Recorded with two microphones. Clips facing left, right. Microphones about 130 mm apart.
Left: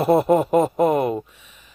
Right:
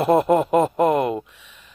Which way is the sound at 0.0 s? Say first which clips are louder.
Even; 5° left (ahead or behind).